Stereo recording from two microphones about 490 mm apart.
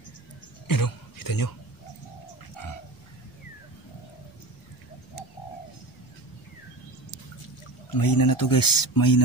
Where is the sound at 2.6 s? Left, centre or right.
Left.